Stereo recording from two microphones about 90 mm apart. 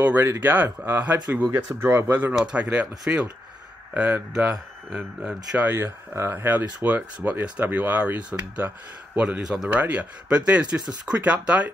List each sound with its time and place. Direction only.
0.0 s speech: 25° right (ahead or behind)
1.8 s speech: 30° right (ahead or behind)
2.3 s speech: 10° right (ahead or behind)
6.1 s speech: 25° right (ahead or behind)